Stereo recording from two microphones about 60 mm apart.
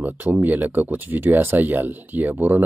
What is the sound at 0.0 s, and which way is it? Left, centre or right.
Speech, right.